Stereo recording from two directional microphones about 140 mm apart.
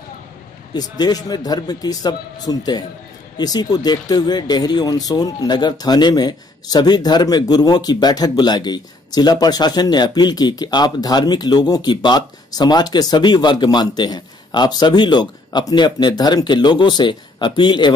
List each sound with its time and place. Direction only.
0.7 s speech: 30° left (ahead or behind)